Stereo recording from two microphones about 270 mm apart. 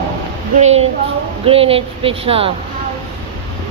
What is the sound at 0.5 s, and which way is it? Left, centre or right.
Speech, right.